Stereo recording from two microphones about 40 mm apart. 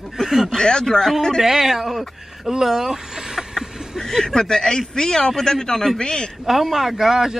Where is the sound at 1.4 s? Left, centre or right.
Centre.